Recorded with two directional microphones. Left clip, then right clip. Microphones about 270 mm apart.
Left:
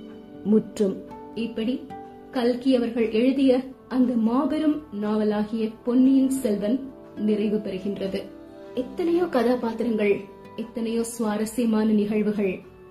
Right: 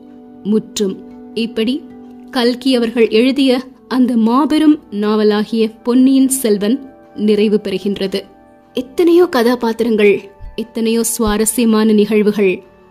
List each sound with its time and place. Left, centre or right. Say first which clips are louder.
0.5 s a woman's voice: right 6 dB; right